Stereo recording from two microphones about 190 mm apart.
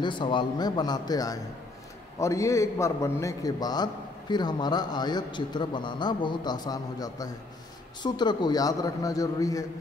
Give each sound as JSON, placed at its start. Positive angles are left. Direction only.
{"t": 0.0, "sound": "a man's voice", "side_deg": 25}